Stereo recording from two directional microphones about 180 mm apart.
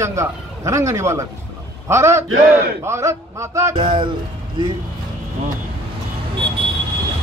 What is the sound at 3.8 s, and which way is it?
Speech, 25° right (ahead or behind).